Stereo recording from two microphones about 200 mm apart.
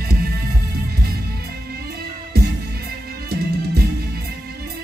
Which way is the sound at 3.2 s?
50° right (ahead or behind).